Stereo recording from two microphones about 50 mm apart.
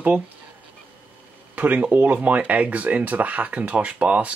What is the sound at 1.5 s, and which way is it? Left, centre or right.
Speech, right.